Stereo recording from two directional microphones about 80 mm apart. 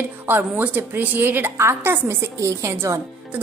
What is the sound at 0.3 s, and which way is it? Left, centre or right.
A woman's voice, right.